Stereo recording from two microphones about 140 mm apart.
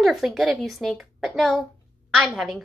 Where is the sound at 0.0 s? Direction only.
Centre (ahead or behind).